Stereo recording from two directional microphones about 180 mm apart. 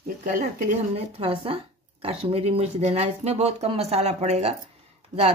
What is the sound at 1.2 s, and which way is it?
Speech, 30° right (ahead or behind).